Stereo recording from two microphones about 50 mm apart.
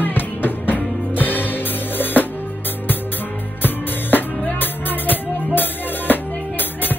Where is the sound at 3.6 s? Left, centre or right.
Left.